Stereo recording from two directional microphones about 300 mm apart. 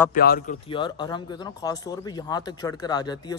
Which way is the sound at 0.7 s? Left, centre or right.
Centre.